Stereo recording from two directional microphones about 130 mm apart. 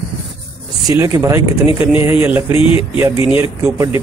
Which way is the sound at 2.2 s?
15° right (ahead or behind).